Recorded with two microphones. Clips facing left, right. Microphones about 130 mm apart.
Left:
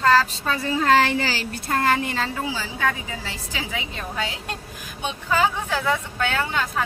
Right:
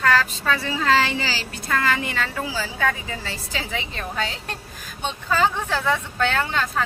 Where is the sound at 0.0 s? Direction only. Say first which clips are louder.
Left 2 dB; 30° left (ahead or behind); by 2.1 s 45° left (ahead or behind).